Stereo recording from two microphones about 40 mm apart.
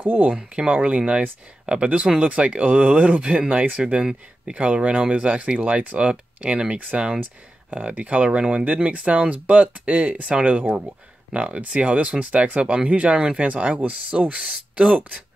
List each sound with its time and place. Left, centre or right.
0.0 s speech: right
0.3 s speech: right
3.7 s speech: right
4.6 s speech: right